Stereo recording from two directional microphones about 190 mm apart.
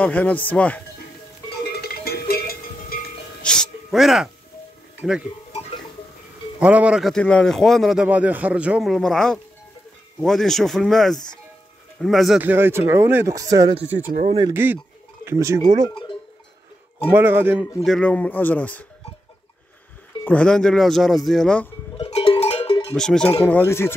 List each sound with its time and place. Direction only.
0.0 s speech: 10° left (ahead or behind)
1.8 s cowbell: 55° left (ahead or behind)
3.4 s music: 5° left (ahead or behind)
5.5 s a sound: 30° left (ahead or behind)
6.6 s speech: 5° right (ahead or behind)
12.4 s speech: 10° right (ahead or behind)
15.9 s cowbell: 25° left (ahead or behind)
17.1 s speech: 10° right (ahead or behind); by 18.9 s 10° left (ahead or behind)
20.2 s speech: 5° left (ahead or behind)
21.9 s cowbell: 30° left (ahead or behind)
22.9 s speech: 5° left (ahead or behind)